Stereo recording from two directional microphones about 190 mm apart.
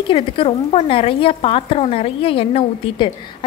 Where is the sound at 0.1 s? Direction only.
30° left (ahead or behind).